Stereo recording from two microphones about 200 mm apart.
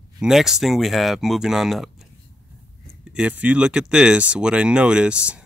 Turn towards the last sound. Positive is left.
turn(degrees=-5)  # may be behind; listen again after turning